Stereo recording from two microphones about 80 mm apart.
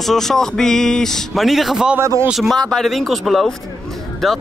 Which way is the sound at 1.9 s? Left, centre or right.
Right.